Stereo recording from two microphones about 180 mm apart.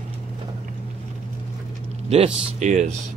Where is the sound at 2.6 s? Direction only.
40° right (ahead or behind).